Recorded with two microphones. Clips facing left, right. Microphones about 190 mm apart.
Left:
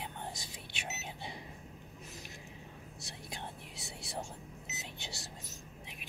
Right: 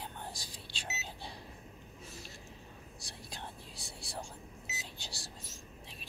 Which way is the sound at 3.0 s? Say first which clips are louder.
Left 2 dB; 20° left (ahead or behind).